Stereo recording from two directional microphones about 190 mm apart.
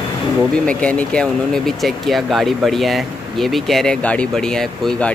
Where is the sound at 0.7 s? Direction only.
5° left (ahead or behind).